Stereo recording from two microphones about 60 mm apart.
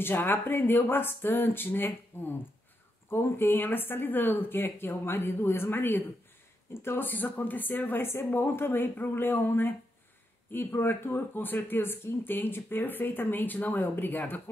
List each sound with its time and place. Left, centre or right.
0.0 s speech: left